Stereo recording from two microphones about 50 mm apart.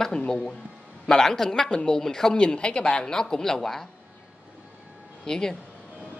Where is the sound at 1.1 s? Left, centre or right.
Centre.